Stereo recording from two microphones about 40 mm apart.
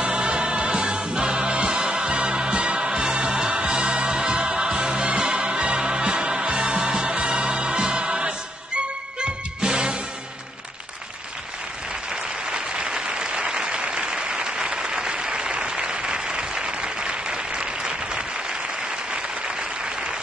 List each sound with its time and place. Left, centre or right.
0.0 s music: right
12.4 s applause: right